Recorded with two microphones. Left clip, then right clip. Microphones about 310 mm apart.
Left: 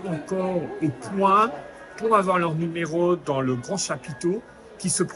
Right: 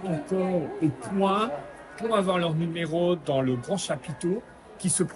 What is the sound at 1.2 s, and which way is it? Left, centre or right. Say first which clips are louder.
Speech: left 6 dB; centre.